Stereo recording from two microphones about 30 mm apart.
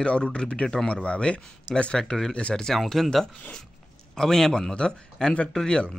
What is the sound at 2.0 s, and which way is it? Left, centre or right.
Speech, centre.